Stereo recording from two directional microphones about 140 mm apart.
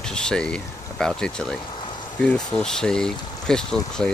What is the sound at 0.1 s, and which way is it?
Speech, 5° left (ahead or behind).